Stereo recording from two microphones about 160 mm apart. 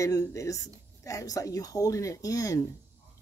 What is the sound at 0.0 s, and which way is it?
Speech, 20° left (ahead or behind).